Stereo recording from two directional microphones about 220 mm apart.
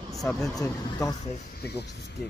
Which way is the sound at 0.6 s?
15° left (ahead or behind).